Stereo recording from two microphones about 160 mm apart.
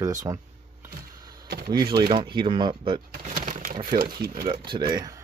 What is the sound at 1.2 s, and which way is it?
Computer keyboard, 25° right (ahead or behind).